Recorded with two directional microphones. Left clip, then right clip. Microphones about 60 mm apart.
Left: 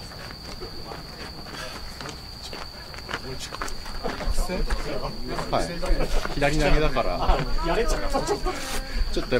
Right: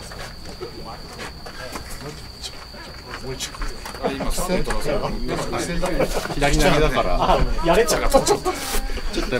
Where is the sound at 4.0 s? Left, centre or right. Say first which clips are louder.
Right 7 dB; right.